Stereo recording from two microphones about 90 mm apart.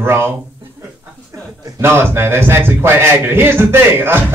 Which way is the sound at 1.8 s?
25° right (ahead or behind).